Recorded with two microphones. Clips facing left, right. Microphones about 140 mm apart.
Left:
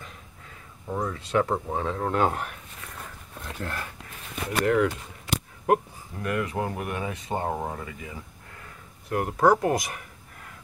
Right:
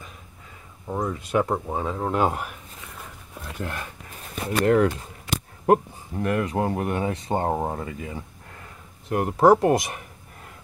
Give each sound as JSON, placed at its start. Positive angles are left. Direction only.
{"t": 0.8, "sound": "speech", "side_deg": -15}
{"t": 3.0, "sound": "a sound", "side_deg": 0}
{"t": 3.5, "sound": "speech", "side_deg": -20}
{"t": 4.6, "sound": "speech", "side_deg": -40}